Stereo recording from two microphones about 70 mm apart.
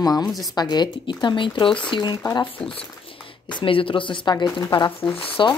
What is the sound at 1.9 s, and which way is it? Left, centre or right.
Speech, left.